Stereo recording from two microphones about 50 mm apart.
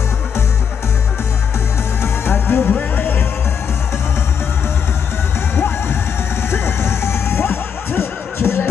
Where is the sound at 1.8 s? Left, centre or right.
Left.